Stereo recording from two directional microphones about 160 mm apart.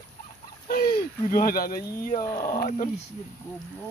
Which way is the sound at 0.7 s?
65° left (ahead or behind).